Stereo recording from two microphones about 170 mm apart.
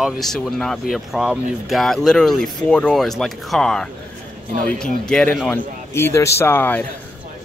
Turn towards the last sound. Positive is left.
turn(degrees=10)  # may be behind; listen again after turning